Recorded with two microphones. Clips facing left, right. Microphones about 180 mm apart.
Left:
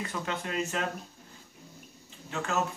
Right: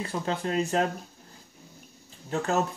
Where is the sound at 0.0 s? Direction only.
30° right (ahead or behind).